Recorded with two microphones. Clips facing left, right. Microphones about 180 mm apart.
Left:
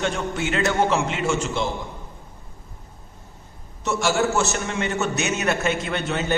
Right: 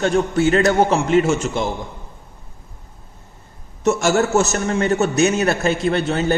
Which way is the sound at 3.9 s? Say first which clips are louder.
Right 5 dB; 45° right (ahead or behind).